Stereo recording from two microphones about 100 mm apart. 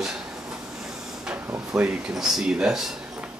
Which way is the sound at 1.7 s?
10° right (ahead or behind).